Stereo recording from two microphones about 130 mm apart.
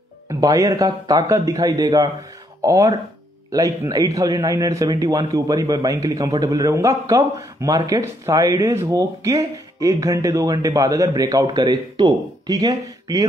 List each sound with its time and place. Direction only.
0.3 s a man's voice: 25° right (ahead or behind)